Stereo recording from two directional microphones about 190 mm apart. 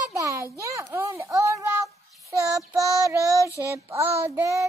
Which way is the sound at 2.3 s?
15° right (ahead or behind).